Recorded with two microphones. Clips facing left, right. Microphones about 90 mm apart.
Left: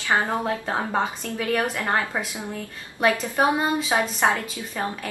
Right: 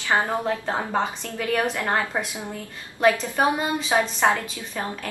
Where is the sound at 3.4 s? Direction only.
15° left (ahead or behind).